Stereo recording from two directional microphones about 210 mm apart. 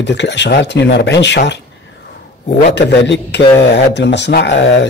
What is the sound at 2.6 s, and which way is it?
Speech, 55° left (ahead or behind).